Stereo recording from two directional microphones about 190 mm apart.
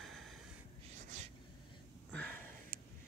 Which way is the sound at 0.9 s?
40° right (ahead or behind).